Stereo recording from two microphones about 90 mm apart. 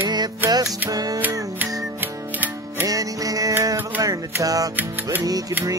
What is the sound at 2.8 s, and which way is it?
Music, 40° right (ahead or behind).